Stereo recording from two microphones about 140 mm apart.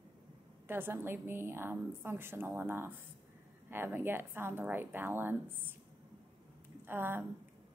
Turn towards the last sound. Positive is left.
turn(degrees=-15)  # may be behind; listen again after turning